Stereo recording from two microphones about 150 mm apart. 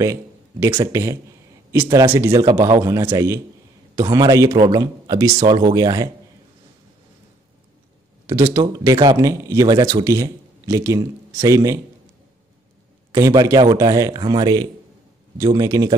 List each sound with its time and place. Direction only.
0.0 s a man's voice: 20° right (ahead or behind)
8.3 s a man's voice: 20° right (ahead or behind)
13.1 s a man's voice: 25° right (ahead or behind)